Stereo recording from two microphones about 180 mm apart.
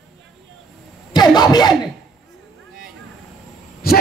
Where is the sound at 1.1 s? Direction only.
25° left (ahead or behind).